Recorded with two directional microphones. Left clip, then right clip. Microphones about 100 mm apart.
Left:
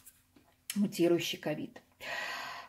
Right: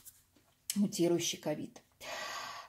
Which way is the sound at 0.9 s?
30° right (ahead or behind).